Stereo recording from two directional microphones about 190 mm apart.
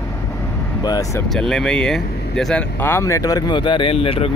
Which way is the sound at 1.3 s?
5° left (ahead or behind).